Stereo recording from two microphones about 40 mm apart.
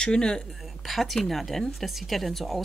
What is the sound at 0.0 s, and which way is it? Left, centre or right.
Speech, centre.